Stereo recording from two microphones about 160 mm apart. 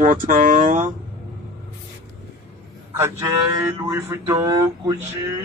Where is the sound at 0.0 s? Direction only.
60° right (ahead or behind).